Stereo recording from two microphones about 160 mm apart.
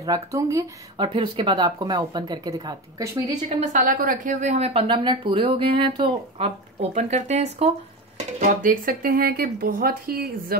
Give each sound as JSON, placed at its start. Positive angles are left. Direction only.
{"t": 0.0, "sound": "speech", "side_deg": -20}
{"t": 1.0, "sound": "speech", "side_deg": -30}
{"t": 3.4, "sound": "speech", "side_deg": -55}
{"t": 8.4, "sound": "speech", "side_deg": -60}